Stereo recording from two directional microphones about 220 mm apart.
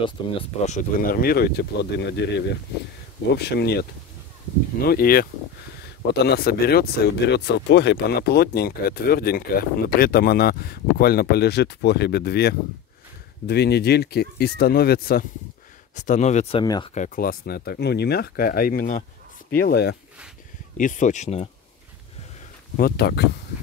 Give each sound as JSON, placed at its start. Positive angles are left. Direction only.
{"t": 0.0, "sound": "speech", "side_deg": 30}
{"t": 4.8, "sound": "speech", "side_deg": 45}
{"t": 16.9, "sound": "speech", "side_deg": 35}
{"t": 20.7, "sound": "speech", "side_deg": 35}
{"t": 22.8, "sound": "speech", "side_deg": 45}